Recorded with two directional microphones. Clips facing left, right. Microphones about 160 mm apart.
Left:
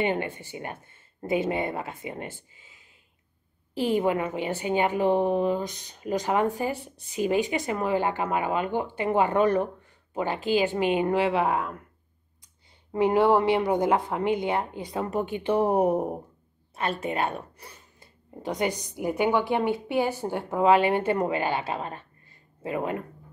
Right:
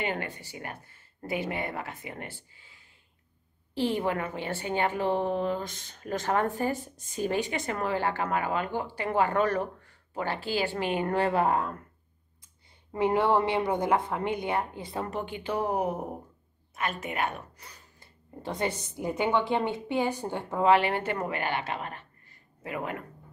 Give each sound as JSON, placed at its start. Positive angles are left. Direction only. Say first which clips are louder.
{"t": 0.0, "sound": "speech", "louder": "left 6 dB", "side_deg": 20}
{"t": 12.9, "sound": "speech", "louder": "left 4 dB", "side_deg": 20}
{"t": 15.4, "sound": "speech", "louder": "left 7 dB", "side_deg": 30}
{"t": 19.6, "sound": "speech", "louder": "left 3 dB", "side_deg": -20}
{"t": 20.5, "sound": "speech", "louder": "left 3 dB", "side_deg": 20}
{"t": 21.4, "sound": "speech", "louder": "left 4 dB", "side_deg": 30}